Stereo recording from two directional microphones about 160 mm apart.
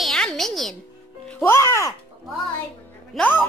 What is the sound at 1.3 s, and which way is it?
Music, 15° left (ahead or behind).